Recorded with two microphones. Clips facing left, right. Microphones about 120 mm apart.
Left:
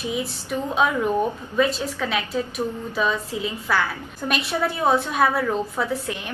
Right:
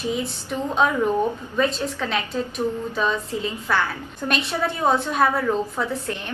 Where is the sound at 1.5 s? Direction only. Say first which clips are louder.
Left 1 dB; 5° left (ahead or behind).